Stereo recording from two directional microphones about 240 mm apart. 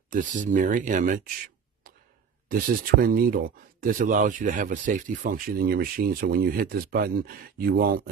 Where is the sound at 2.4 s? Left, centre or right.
Right.